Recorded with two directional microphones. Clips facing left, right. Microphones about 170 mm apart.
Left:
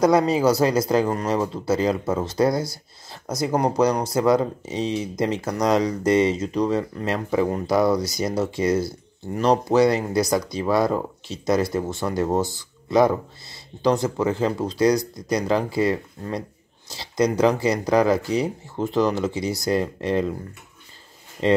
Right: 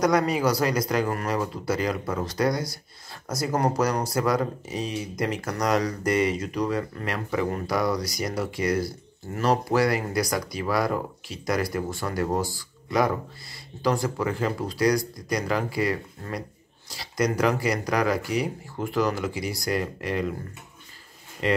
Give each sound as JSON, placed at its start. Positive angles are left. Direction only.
{"t": 0.0, "sound": "speech", "side_deg": 25}
{"t": 21.4, "sound": "speech", "side_deg": 25}